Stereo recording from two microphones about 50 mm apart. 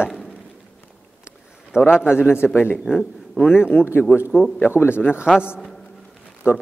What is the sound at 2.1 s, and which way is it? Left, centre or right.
Speech, left.